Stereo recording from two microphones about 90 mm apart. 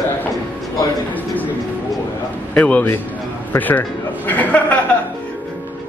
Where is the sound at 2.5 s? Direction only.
15° left (ahead or behind).